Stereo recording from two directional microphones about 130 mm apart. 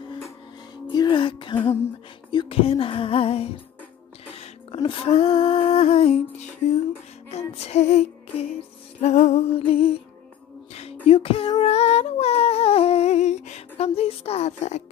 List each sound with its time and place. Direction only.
0.9 s music: 40° left (ahead or behind)
4.4 s a sound: 45° left (ahead or behind)
7.5 s music: 60° left (ahead or behind)
9.6 s music: 45° left (ahead or behind)
11.6 s humming: 55° left (ahead or behind)